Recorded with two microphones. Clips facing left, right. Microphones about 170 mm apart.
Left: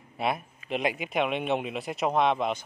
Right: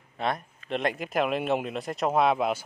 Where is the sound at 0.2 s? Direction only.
5° left (ahead or behind).